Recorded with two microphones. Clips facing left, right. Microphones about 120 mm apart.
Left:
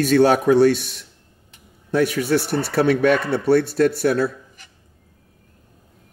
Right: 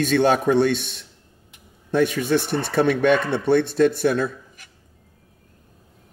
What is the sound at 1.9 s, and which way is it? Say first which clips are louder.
Speech: left 1 dB; 10° left (ahead or behind).